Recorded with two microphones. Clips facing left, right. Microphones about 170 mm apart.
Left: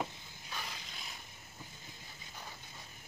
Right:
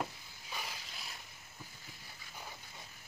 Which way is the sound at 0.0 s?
5° right (ahead or behind).